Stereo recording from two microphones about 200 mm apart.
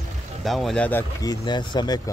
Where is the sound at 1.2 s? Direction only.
20° left (ahead or behind).